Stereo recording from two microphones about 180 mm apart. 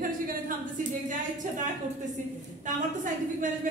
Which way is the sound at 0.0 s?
50° right (ahead or behind).